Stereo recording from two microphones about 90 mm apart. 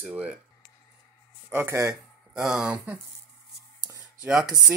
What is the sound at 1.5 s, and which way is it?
Speech, 20° right (ahead or behind).